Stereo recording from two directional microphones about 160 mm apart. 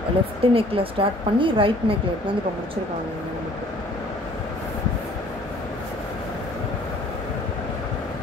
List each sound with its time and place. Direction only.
0.4 s speech: 35° right (ahead or behind)